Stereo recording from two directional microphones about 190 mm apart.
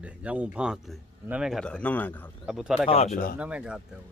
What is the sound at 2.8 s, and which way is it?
Speech, 30° left (ahead or behind).